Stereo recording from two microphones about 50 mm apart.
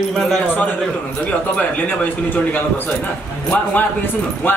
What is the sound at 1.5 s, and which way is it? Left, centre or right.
A man's voice, left.